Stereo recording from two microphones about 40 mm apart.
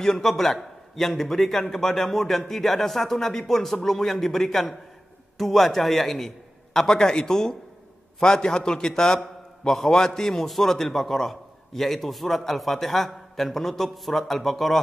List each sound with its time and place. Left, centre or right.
0.0 s a man's voice: centre